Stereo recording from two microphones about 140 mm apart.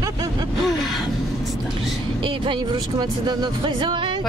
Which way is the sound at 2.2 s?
35° right (ahead or behind).